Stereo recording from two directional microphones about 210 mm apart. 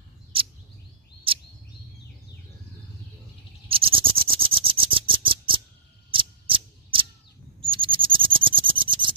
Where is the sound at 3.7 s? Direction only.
25° right (ahead or behind).